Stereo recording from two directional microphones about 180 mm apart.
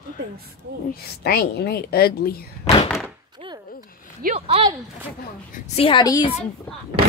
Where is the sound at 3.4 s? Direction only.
30° right (ahead or behind).